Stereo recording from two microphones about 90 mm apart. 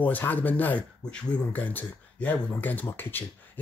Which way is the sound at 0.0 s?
20° left (ahead or behind).